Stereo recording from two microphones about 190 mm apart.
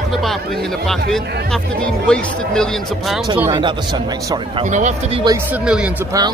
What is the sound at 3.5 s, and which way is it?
Speech, 25° right (ahead or behind).